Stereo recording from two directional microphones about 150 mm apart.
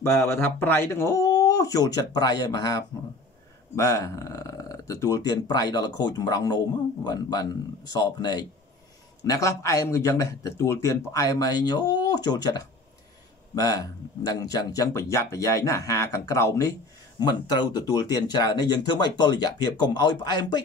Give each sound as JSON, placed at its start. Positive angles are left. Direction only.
{"t": 0.0, "sound": "a man's voice", "side_deg": 15}